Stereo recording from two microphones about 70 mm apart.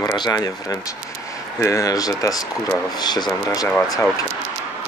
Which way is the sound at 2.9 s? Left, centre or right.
Left.